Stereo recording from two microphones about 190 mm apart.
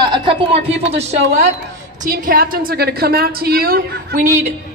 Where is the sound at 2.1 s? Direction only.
50° right (ahead or behind).